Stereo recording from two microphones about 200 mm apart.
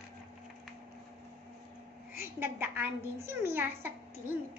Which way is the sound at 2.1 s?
10° right (ahead or behind).